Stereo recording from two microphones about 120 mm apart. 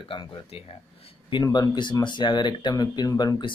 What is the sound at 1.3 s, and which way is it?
Speech, 35° left (ahead or behind).